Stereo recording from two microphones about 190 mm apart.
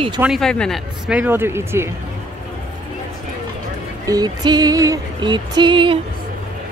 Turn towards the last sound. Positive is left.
turn(degrees=-25)  # may be behind; listen again after turning